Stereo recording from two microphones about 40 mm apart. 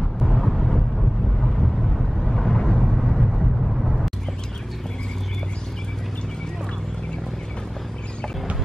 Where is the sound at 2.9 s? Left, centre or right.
Centre.